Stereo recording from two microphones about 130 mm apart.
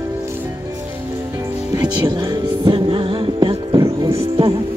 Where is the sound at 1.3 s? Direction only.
25° right (ahead or behind); by 4.6 s 40° right (ahead or behind).